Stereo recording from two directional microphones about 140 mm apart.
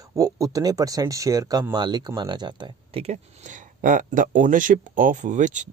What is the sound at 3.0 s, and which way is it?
Speech, 60° right (ahead or behind).